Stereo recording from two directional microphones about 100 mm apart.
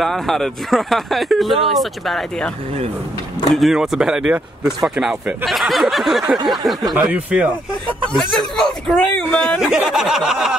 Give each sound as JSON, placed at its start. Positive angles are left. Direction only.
{"t": 0.0, "sound": "speech", "side_deg": 0}
{"t": 3.5, "sound": "speech", "side_deg": -5}
{"t": 6.2, "sound": "a sound", "side_deg": -45}
{"t": 6.5, "sound": "speech", "side_deg": 0}
{"t": 7.1, "sound": "speech", "side_deg": -15}
{"t": 8.1, "sound": "speech", "side_deg": 0}
{"t": 9.6, "sound": "speech", "side_deg": -5}